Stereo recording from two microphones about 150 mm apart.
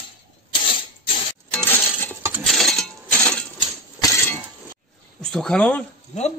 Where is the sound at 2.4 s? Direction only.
Centre (ahead or behind).